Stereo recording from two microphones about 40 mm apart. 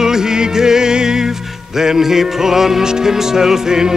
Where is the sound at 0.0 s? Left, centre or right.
Centre.